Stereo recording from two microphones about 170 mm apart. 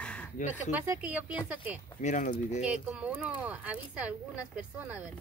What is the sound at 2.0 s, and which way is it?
Speech, 50° left (ahead or behind).